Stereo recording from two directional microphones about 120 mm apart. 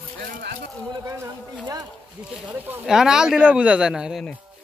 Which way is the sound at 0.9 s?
25° right (ahead or behind).